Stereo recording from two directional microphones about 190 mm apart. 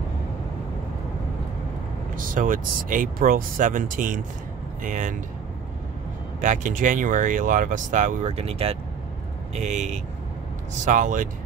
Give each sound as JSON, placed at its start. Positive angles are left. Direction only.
{"t": 2.1, "sound": "speech", "side_deg": -45}
{"t": 6.4, "sound": "speech", "side_deg": -40}